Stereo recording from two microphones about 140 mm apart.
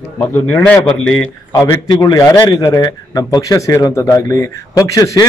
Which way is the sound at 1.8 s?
30° left (ahead or behind).